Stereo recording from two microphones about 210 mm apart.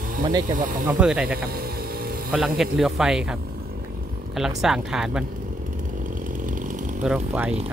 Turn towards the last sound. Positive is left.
turn(degrees=-5)  # may be behind; listen again after turning